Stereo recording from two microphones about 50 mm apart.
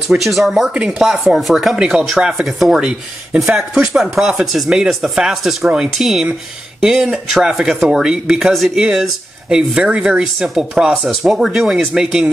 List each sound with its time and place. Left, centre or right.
0.2 s speech: centre
1.8 s speech: centre
2.4 s speech: centre
3.5 s speech: centre
8.0 s speech: centre
8.4 s speech: centre
8.7 s speech: centre
9.8 s speech: centre